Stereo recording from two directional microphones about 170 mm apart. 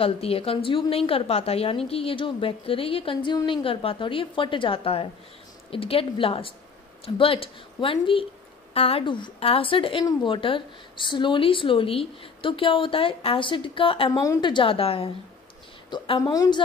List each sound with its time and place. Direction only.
0.0 s a woman's voice: 35° left (ahead or behind)
15.9 s speech: 25° left (ahead or behind)